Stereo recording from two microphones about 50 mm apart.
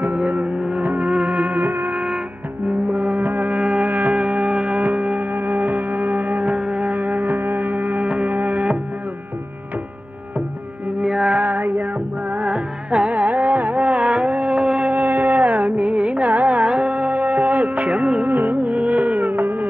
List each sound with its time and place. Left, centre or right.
0.0 s music: right
0.8 s music of bollywood: right
2.7 s music: right
11.0 s music: centre
11.3 s music: right
12.4 s music: right
18.3 s music: right